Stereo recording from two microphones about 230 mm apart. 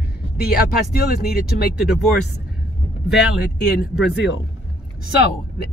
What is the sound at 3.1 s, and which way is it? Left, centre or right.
Speech, left.